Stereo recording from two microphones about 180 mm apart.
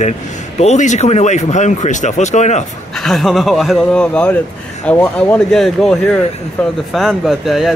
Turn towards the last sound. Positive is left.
turn(degrees=0)  # may be behind; listen again after turning